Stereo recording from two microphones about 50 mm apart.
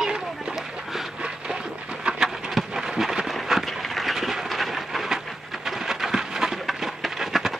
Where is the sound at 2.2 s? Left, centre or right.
Centre.